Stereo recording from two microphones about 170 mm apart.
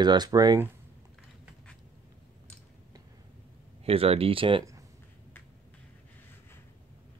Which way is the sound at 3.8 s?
35° right (ahead or behind).